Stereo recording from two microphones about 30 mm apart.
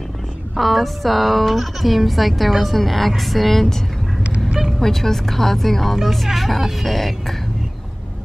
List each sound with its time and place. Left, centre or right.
0.6 s speech: centre
4.2 s duck: right
4.7 s speech: centre